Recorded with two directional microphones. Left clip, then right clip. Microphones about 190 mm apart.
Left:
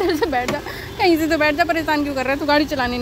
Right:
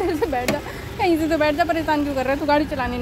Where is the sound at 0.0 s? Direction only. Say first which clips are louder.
Left 3 dB; 5° left (ahead or behind).